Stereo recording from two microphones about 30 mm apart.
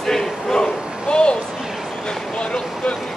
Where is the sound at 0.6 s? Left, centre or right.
Left.